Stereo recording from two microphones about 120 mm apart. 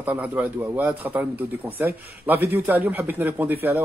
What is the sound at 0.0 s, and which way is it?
Speech, 15° right (ahead or behind).